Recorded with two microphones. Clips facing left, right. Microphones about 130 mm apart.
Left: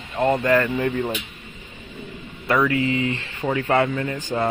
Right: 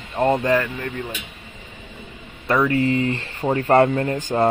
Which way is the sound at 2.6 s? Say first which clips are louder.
Right 2 dB; 40° right (ahead or behind).